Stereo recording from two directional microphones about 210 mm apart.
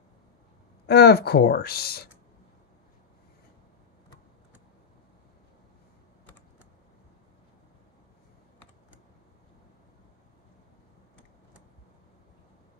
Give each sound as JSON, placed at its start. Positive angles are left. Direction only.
{"t": 0.8, "sound": "speech", "side_deg": 50}